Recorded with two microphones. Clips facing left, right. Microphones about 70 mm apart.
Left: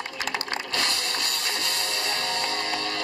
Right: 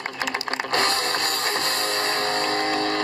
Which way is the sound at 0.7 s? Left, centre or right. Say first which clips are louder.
Right 8 dB; right.